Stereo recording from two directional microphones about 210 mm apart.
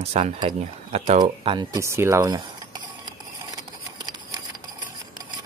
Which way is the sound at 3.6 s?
20° right (ahead or behind).